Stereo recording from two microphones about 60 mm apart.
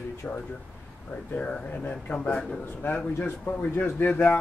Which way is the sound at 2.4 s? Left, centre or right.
Left.